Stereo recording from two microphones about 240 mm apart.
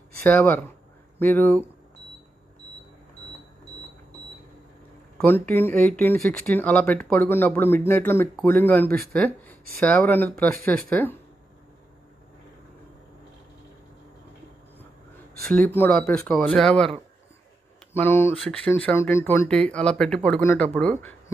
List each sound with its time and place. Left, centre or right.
0.3 s speech: centre
5.1 s a sound: centre
5.5 s speech: centre
15.3 s speech: centre
18.3 s speech: centre